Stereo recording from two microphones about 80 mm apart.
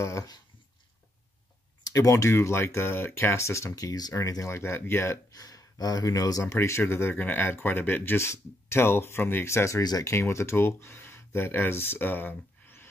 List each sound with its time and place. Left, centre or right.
0.0 s speech: left
1.9 s speech: left
5.3 s speech: left
6.4 s speech: left